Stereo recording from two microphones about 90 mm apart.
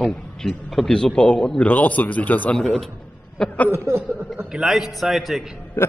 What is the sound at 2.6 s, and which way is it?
Speech, 5° left (ahead or behind).